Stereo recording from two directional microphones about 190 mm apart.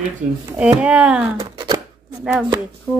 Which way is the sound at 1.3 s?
20° right (ahead or behind).